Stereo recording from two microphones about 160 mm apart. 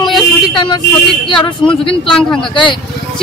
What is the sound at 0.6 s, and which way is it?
A man's voice, 30° left (ahead or behind).